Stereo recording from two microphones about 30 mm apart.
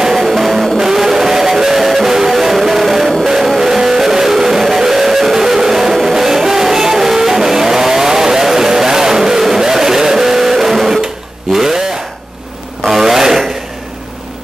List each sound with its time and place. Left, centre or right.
0.3 s music: centre
0.7 s music: centre
11.5 s a sound: centre
12.8 s rub: centre